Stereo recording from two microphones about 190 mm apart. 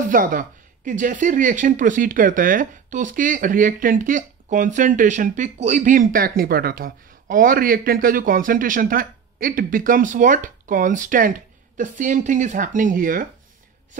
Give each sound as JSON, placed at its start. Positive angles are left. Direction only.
{"t": 0.1, "sound": "speech", "side_deg": -45}